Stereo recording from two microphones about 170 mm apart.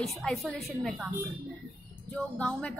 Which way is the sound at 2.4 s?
5° left (ahead or behind).